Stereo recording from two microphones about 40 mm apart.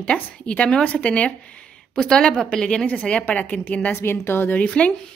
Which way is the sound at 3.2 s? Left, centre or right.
Left.